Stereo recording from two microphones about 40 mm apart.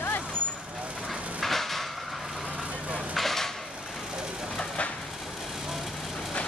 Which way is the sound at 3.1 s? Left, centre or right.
Centre.